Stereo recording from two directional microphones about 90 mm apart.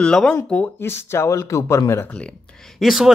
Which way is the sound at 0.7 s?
25° left (ahead or behind).